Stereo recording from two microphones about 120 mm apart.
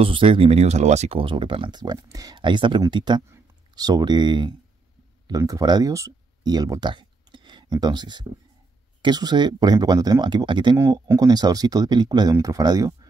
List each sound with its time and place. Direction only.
0.0 s speech: 45° right (ahead or behind); by 1.2 s 65° right (ahead or behind)
1.2 s speech: 45° right (ahead or behind)
10.8 s speech: 25° right (ahead or behind)